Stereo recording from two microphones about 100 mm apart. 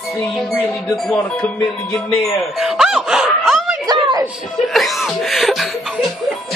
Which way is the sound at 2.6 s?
5° right (ahead or behind).